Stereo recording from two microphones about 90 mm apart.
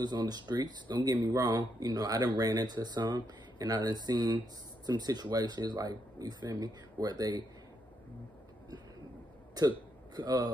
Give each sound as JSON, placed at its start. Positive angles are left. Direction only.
{"t": 0.0, "sound": "speech", "side_deg": -50}
{"t": 1.3, "sound": "speech", "side_deg": -45}
{"t": 9.6, "sound": "a man's voice", "side_deg": -50}